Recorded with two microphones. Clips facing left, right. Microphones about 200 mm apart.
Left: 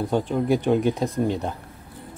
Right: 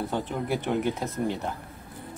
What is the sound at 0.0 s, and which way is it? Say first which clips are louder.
Speech: left 7 dB; 15° left (ahead or behind).